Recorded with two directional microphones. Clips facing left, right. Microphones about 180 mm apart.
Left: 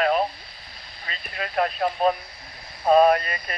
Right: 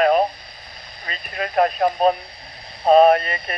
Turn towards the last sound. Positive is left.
turn(degrees=-25)  # may be behind; listen again after turning